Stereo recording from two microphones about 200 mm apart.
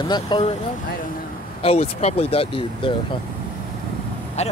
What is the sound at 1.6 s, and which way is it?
Speech, 30° left (ahead or behind).